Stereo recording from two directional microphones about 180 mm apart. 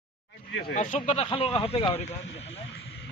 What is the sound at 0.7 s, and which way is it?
Speech, 40° left (ahead or behind).